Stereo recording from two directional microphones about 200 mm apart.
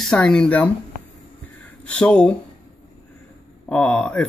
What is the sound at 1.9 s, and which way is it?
Speech, 5° left (ahead or behind).